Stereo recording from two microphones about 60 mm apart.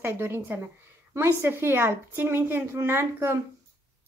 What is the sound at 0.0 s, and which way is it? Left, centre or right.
A woman's voice, right.